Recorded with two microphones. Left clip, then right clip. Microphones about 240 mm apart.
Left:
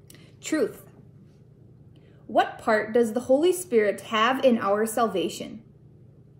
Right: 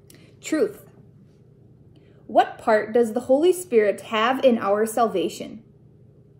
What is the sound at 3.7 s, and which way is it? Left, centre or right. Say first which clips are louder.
A woman's voice: right 3 dB; centre.